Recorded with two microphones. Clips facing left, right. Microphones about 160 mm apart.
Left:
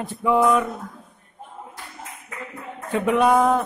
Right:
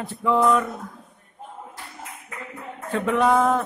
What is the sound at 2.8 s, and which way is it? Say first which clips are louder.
Speech: left 2 dB; 15° left (ahead or behind).